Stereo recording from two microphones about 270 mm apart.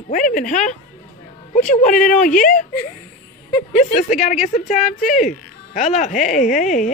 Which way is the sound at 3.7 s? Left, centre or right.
Left.